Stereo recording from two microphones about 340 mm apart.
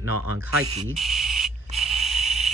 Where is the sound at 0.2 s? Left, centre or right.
Right.